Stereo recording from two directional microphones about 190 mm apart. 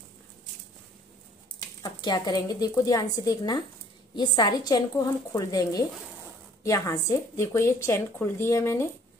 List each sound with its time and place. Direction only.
1.8 s speech: 20° left (ahead or behind)